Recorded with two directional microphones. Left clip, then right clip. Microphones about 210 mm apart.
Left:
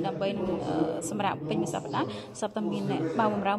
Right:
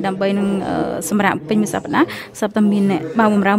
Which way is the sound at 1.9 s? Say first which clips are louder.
Right 17 dB; 90° right.